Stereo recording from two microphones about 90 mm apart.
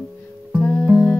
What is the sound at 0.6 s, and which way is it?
Music, 20° left (ahead or behind).